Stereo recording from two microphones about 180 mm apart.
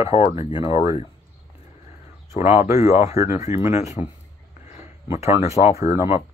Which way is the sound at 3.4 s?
40° left (ahead or behind).